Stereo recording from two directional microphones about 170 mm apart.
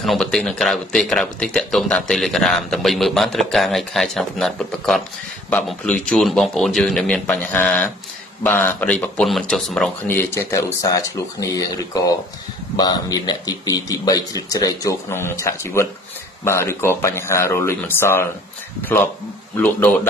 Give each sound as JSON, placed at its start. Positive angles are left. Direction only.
{"t": 0.0, "sound": "speech", "side_deg": 0}
{"t": 10.0, "sound": "speech", "side_deg": 15}
{"t": 19.5, "sound": "speech", "side_deg": 10}